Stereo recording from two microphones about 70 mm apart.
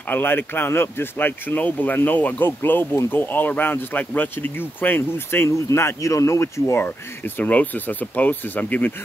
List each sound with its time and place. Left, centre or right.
0.1 s speech: left
7.3 s speech: left